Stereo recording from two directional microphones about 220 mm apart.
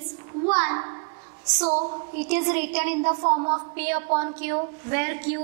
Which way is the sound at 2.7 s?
10° right (ahead or behind).